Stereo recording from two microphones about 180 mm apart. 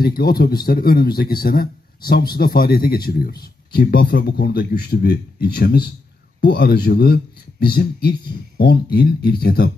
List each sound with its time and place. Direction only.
0.0 s a man's voice: 55° left (ahead or behind)